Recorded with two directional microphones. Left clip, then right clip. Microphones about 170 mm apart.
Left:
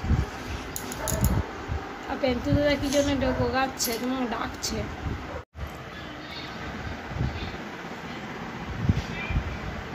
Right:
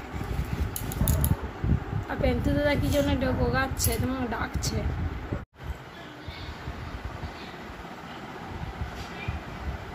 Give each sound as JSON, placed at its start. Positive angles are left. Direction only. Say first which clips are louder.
{"t": 2.2, "sound": "speech", "louder": "left 2 dB", "side_deg": -15}